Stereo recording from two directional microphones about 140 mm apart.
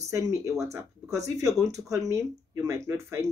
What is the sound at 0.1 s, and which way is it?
Speech, 20° right (ahead or behind).